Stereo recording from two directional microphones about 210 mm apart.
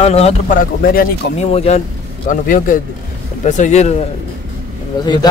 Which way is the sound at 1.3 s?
30° left (ahead or behind).